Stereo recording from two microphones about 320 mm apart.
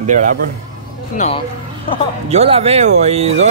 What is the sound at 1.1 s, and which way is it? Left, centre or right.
Speech, centre.